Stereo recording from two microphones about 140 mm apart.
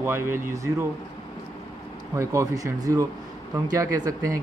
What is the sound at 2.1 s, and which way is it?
A man's voice, 20° right (ahead or behind).